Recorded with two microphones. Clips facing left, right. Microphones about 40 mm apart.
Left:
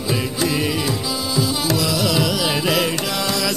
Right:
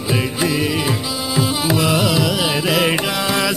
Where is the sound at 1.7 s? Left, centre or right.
Right.